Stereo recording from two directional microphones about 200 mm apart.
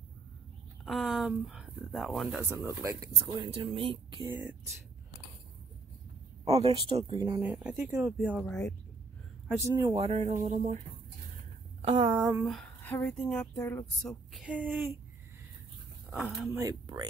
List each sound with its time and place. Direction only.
0.8 s speech: centre (ahead or behind)
2.5 s speech: 15° right (ahead or behind)
4.3 s a woman's voice: 10° right (ahead or behind)
6.4 s speech: 30° right (ahead or behind)
7.4 s speech: 5° right (ahead or behind)
9.5 s speech: 20° right (ahead or behind); by 10.8 s 35° right (ahead or behind)
11.8 s speech: 25° right (ahead or behind)
12.4 s speech: 5° left (ahead or behind)
14.3 s a woman's voice: 5° right (ahead or behind)
16.1 s speech: centre (ahead or behind)
16.6 s speech: 20° right (ahead or behind)